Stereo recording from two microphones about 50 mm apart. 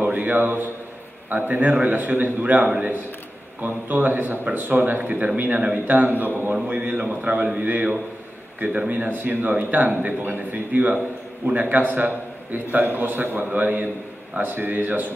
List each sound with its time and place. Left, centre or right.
0.0 s a man's voice: right
2.6 s a man's voice: right
3.6 s a man's voice: right
5.9 s a man's voice: right
6.5 s a man's voice: right